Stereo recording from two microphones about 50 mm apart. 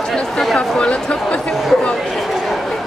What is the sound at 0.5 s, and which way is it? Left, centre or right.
Speech, left.